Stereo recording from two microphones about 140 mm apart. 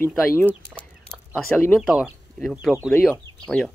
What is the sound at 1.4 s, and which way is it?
Speech, 10° left (ahead or behind).